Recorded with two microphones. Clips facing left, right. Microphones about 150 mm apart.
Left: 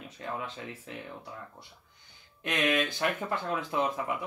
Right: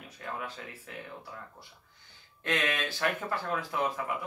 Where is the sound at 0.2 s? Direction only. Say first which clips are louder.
Left 2 dB; 20° left (ahead or behind).